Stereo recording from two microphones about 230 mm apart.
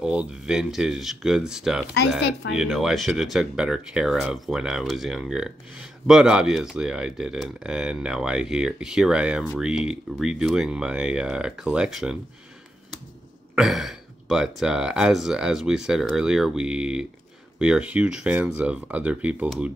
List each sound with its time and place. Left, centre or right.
0.0 s speech: centre
2.1 s speech: left
2.5 s speech: centre
13.6 s speech: centre